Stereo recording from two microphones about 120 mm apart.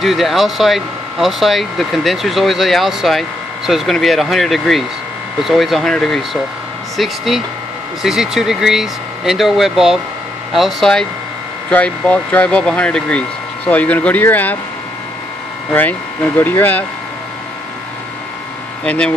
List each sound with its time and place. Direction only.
0.0 s speech: centre (ahead or behind); by 14.6 s 15° left (ahead or behind)
16.3 s speech: 15° left (ahead or behind)
18.9 s speech: 5° left (ahead or behind)